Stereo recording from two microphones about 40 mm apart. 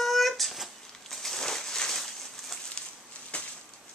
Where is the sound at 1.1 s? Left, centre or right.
Centre.